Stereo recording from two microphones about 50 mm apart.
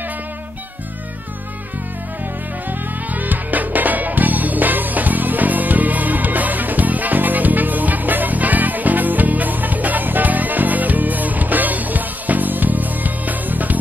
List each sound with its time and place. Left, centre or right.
3.2 s music: right